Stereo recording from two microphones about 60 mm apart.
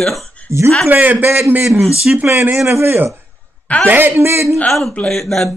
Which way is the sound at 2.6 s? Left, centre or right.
Right.